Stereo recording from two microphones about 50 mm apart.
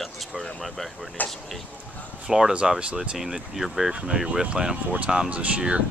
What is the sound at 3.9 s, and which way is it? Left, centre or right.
Speech, centre.